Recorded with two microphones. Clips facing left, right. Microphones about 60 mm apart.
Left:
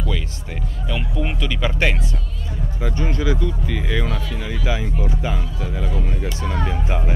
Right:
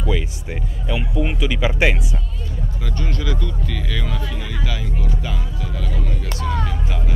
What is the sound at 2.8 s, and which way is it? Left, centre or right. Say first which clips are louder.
Speech: left 5 dB; centre.